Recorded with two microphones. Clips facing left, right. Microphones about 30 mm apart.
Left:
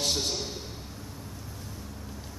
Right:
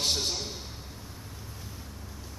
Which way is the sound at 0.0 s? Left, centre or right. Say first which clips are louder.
Even; centre.